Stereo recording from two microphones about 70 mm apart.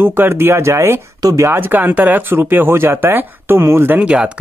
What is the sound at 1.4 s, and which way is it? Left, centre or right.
Speech, right.